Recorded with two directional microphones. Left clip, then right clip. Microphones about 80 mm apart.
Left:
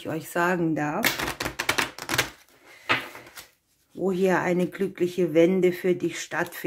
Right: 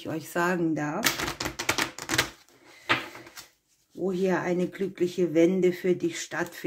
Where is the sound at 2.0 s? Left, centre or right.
Centre.